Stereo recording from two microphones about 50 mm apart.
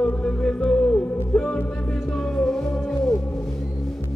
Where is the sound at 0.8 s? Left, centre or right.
Left.